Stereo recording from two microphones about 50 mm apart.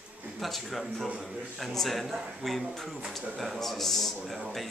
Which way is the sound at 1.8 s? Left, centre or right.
Centre.